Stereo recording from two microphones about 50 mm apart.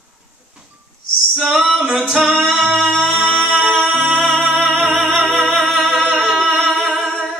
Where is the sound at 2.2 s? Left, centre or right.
Centre.